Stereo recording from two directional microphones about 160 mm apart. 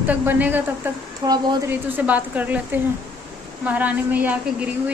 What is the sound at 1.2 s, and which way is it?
Speech, 25° right (ahead or behind).